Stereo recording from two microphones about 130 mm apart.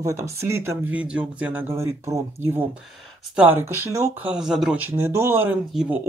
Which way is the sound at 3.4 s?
15° right (ahead or behind).